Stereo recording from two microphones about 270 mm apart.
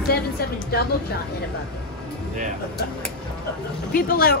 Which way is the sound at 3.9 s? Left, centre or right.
Left.